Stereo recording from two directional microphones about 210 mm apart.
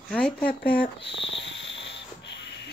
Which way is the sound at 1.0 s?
60° left (ahead or behind).